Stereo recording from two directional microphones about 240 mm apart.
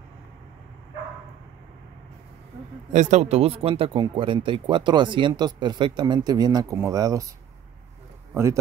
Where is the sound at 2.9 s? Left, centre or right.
Right; by 7.3 s centre.